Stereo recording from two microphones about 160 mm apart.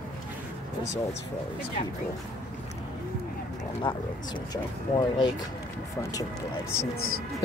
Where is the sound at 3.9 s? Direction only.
30° left (ahead or behind).